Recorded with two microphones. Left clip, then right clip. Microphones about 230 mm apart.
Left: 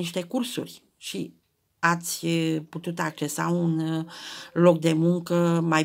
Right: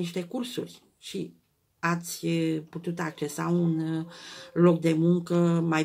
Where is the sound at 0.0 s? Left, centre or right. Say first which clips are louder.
Left 4 dB; left.